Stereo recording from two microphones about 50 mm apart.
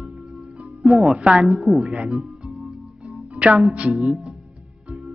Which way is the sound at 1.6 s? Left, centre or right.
Centre.